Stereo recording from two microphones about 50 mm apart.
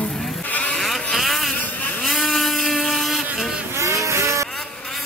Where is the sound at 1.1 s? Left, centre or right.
Centre.